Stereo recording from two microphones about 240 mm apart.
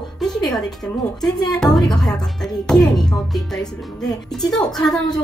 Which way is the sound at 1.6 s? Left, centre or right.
Centre.